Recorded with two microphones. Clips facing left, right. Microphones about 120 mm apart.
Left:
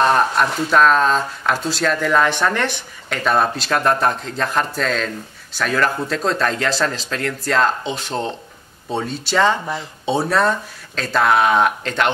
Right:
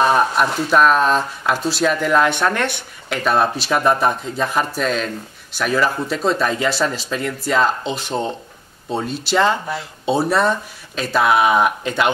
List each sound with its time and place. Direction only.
0.0 s speech: 5° right (ahead or behind)